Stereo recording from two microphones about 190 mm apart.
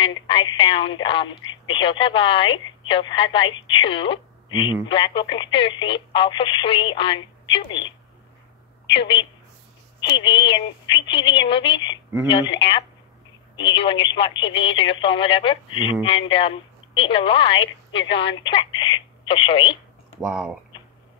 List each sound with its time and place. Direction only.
0.3 s speech: 25° left (ahead or behind)
8.9 s a woman's voice: 70° left (ahead or behind)
9.9 s speech: 25° left (ahead or behind)
20.2 s speech: 5° right (ahead or behind)